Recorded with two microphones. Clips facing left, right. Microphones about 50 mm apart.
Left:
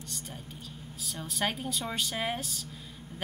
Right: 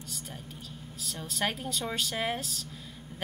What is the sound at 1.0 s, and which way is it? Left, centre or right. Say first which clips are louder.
Speech: even; centre.